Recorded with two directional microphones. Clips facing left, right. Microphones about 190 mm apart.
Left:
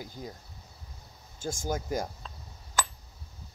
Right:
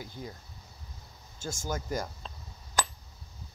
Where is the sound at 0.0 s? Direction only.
45° left (ahead or behind).